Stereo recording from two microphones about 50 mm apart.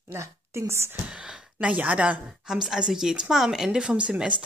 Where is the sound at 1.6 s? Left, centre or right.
Right.